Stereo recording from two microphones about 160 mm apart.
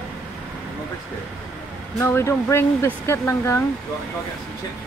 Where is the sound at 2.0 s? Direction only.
15° left (ahead or behind).